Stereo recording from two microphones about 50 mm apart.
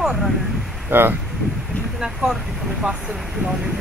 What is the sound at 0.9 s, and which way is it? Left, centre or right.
Speech, right.